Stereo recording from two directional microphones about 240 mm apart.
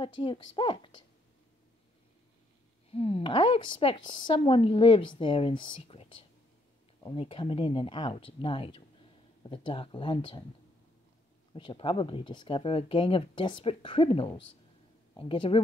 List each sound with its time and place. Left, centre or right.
0.0 s a woman's voice: centre
2.9 s a woman's voice: left
11.5 s a woman's voice: left